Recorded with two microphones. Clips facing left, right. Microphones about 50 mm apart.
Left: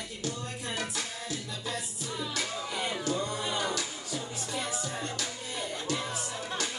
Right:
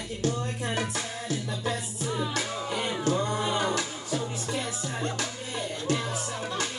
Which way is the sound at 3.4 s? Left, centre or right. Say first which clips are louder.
Right 5 dB; centre.